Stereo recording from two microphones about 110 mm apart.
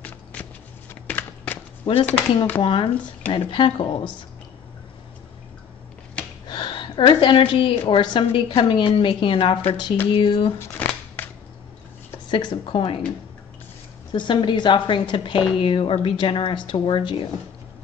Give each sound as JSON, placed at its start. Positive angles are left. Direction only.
{"t": 0.0, "sound": "a sound", "side_deg": 15}
{"t": 2.0, "sound": "speech", "side_deg": 20}
{"t": 2.6, "sound": "a woman's voice", "side_deg": 50}
{"t": 3.0, "sound": "speech", "side_deg": 10}
{"t": 3.3, "sound": "a woman's voice", "side_deg": 50}
{"t": 6.4, "sound": "a sound", "side_deg": 40}
{"t": 7.9, "sound": "a woman's voice", "side_deg": 45}
{"t": 10.6, "sound": "shuffling cards", "side_deg": 15}
{"t": 12.3, "sound": "a woman's voice", "side_deg": 45}
{"t": 14.1, "sound": "a woman's voice", "side_deg": 45}